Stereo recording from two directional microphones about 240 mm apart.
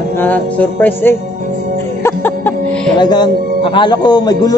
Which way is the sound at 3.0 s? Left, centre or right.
Centre.